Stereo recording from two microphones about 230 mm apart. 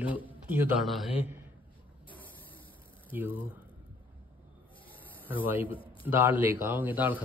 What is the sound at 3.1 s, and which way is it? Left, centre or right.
Speech, centre.